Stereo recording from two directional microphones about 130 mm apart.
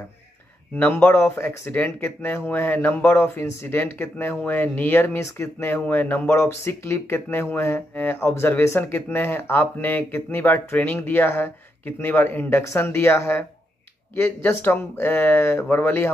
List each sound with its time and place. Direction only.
0.7 s speech: 15° left (ahead or behind)